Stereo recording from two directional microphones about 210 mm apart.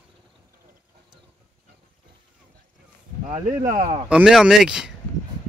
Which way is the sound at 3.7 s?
40° right (ahead or behind).